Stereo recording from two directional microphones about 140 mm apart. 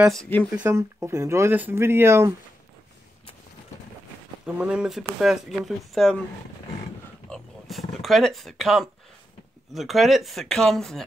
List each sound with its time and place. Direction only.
0.1 s speech: 5° left (ahead or behind)
0.7 s speech: 20° right (ahead or behind)
4.5 s speech: 5° right (ahead or behind)
7.2 s speech: centre (ahead or behind)